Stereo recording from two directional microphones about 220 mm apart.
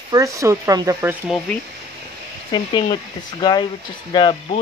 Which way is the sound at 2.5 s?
20° left (ahead or behind).